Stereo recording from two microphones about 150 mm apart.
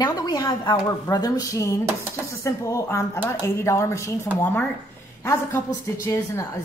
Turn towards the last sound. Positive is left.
turn(degrees=20)  # may be behind; listen again after turning